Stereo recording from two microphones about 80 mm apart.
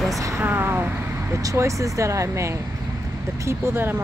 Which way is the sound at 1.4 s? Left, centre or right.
Right.